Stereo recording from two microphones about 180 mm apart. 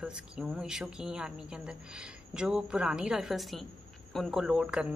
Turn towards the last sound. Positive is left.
turn(degrees=-5)  # may be behind; listen again after turning